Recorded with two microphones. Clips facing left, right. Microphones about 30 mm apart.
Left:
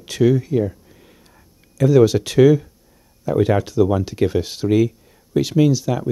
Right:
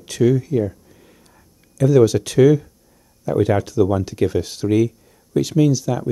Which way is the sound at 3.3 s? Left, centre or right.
Centre.